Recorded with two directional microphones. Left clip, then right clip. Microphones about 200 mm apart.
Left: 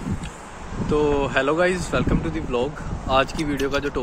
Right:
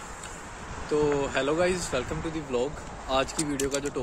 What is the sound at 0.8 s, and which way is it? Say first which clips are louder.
Speech: left 5 dB; centre (ahead or behind).